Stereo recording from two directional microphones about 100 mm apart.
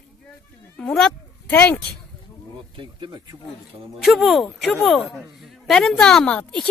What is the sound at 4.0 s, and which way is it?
A woman's voice, centre (ahead or behind).